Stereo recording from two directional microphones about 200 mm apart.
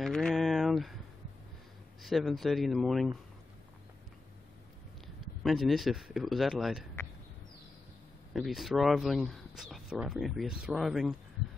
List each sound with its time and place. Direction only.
0.0 s a sound: centre (ahead or behind)
2.0 s speech: centre (ahead or behind)
5.0 s speech: centre (ahead or behind)
8.3 s speech: centre (ahead or behind)